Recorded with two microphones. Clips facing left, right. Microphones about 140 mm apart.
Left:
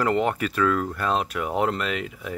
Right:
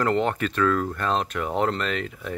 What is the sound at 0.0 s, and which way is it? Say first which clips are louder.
Speech: even; 5° left (ahead or behind).